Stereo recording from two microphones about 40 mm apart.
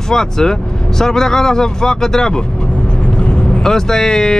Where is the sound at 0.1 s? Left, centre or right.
Centre.